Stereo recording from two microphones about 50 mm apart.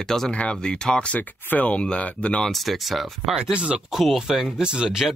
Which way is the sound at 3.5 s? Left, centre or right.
Right.